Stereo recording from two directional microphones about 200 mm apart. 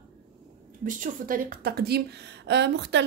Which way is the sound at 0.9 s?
40° right (ahead or behind).